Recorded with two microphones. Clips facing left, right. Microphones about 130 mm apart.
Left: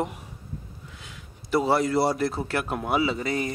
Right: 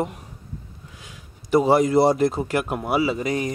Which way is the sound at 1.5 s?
15° right (ahead or behind).